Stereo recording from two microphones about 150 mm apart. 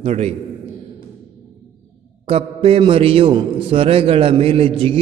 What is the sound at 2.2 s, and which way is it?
A man's voice, 40° right (ahead or behind).